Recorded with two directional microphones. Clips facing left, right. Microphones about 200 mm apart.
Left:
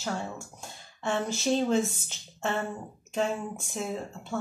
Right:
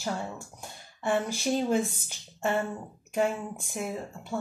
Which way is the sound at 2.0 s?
15° right (ahead or behind).